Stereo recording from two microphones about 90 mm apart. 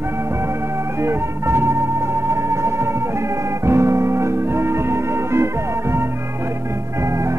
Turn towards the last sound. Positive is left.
turn(degrees=-35)  # may be behind; listen again after turning